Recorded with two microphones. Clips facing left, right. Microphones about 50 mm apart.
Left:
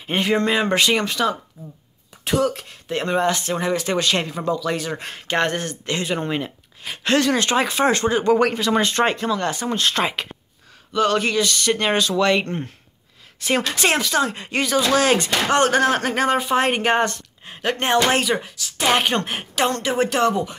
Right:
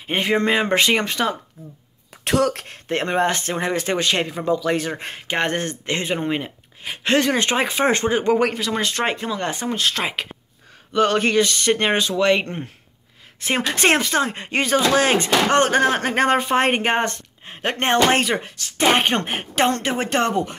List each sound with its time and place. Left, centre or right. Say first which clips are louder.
0.0 s speech: even; centre
2.2 s speech: right 1 dB; right
3.1 s speech: left 1 dB; right
6.1 s speech: right 1 dB; centre
8.4 s speech: left 2 dB; centre
9.0 s speech: left 3 dB; centre
9.7 s speech: left 2 dB; centre
10.9 s a woman's voice: right 1 dB; right